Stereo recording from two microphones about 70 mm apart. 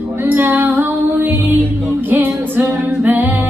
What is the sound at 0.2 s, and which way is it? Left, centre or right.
Music, right.